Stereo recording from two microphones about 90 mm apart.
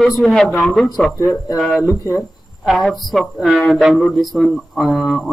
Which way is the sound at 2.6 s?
Centre (ahead or behind).